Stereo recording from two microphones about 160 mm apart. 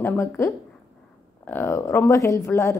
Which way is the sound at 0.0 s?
15° left (ahead or behind).